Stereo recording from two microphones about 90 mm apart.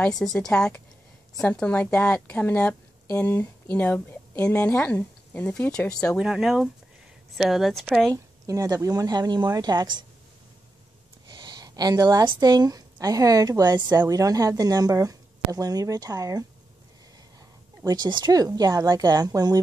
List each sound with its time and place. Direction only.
0.1 s a woman's voice: 5° left (ahead or behind)
5.7 s a woman's voice: 10° left (ahead or behind)
6.1 s a woman's voice: 10° right (ahead or behind)
8.5 s a woman's voice: 40° right (ahead or behind)
11.2 s a sound: 55° right (ahead or behind)
12.4 s a woman's voice: 45° right (ahead or behind)
17.8 s a woman's voice: 50° right (ahead or behind)